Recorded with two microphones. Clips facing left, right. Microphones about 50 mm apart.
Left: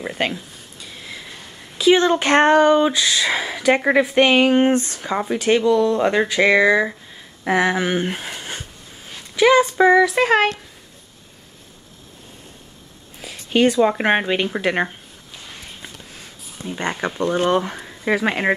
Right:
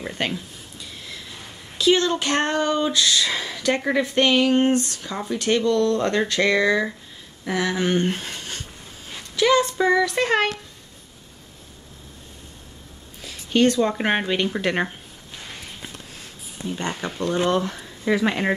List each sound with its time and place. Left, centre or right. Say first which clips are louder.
0.0 s a sound: left 3 dB; centre
1.8 s speech: left 4 dB; centre
2.0 s speech: left 8 dB; left
5.4 s speech: left 3 dB; centre
7.4 s speech: left 6 dB; left
7.7 s speech: left 1 dB; centre
13.2 s a sound: left 2 dB; centre
14.0 s speech: left 3 dB; centre
16.6 s speech: left 4 dB; left